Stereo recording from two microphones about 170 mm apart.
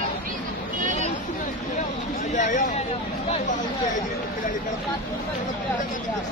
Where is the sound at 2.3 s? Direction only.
45° left (ahead or behind).